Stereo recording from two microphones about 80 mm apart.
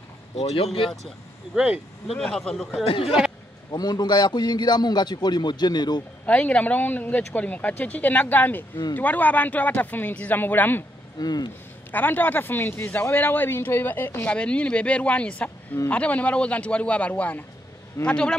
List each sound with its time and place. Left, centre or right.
1.5 s speech: centre
2.0 s a man's voice: centre
3.7 s a man's voice: left
6.2 s speech: centre
11.1 s a man's voice: left
11.9 s speech: left
14.3 s a man's voice: centre